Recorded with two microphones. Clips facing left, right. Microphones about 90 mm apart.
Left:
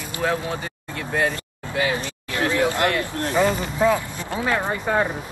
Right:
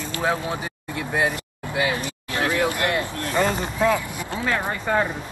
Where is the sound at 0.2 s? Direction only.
15° right (ahead or behind).